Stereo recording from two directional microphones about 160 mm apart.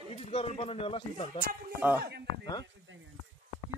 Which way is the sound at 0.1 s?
40° left (ahead or behind).